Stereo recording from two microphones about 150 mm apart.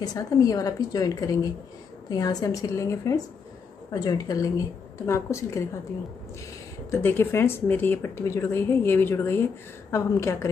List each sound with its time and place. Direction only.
0.0 s a woman's voice: 25° left (ahead or behind)
6.9 s a woman's voice: 15° left (ahead or behind)